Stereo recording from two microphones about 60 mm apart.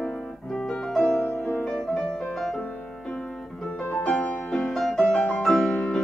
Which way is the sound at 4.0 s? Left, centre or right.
Centre.